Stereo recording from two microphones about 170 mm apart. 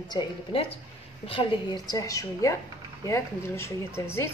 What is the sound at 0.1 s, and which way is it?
A woman's voice, 30° left (ahead or behind).